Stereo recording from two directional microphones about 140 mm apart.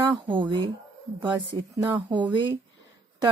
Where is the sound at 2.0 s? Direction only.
35° right (ahead or behind).